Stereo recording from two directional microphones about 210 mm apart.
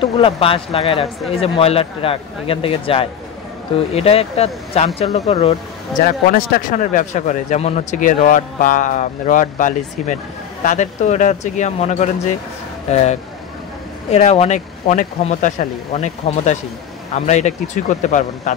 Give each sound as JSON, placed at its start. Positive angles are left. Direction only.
{"t": 0.0, "sound": "speech", "side_deg": 25}
{"t": 6.0, "sound": "speech", "side_deg": 40}